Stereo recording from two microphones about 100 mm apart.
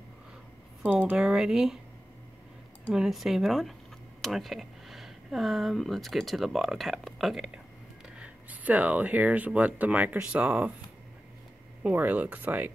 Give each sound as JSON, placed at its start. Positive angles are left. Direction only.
{"t": 0.8, "sound": "speech", "side_deg": -15}
{"t": 2.9, "sound": "speech", "side_deg": -5}
{"t": 8.2, "sound": "speech", "side_deg": -15}
{"t": 11.9, "sound": "speech", "side_deg": -15}